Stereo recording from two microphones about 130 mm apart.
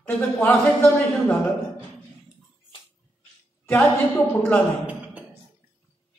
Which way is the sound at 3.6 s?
20° left (ahead or behind).